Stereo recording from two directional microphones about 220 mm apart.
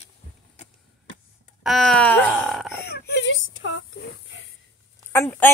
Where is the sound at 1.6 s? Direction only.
Centre (ahead or behind).